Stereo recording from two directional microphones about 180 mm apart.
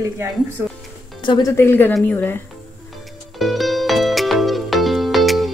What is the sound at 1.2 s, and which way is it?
Speech, 25° left (ahead or behind).